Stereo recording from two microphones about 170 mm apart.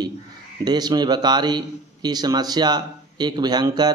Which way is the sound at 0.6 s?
25° right (ahead or behind).